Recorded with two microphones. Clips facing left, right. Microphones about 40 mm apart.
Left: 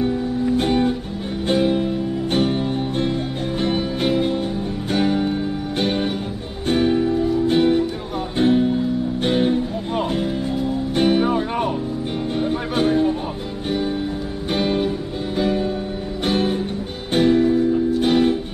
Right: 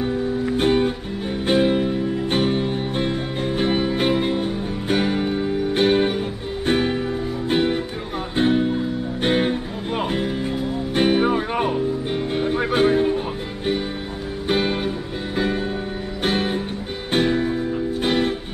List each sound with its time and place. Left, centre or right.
0.7 s music: centre
14.5 s music: centre
17.1 s music: centre